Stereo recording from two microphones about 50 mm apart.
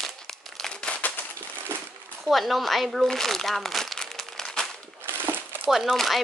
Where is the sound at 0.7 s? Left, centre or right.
Centre.